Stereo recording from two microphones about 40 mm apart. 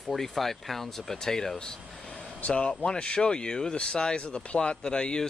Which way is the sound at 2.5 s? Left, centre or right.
Left.